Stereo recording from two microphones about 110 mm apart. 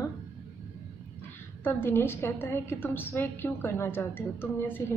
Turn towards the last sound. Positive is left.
turn(degrees=20)  # may be behind; listen again after turning